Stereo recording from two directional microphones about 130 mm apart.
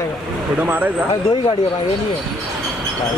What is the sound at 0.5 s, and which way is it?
Speech, 10° right (ahead or behind).